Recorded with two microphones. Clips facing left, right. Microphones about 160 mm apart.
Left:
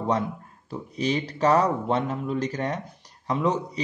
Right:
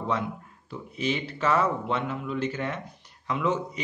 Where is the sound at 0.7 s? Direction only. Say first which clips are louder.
Left 3 dB; 40° left (ahead or behind).